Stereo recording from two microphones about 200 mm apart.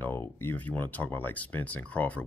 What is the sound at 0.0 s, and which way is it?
Speech, 10° left (ahead or behind).